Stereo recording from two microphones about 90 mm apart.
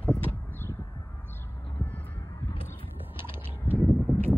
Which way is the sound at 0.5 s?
25° left (ahead or behind).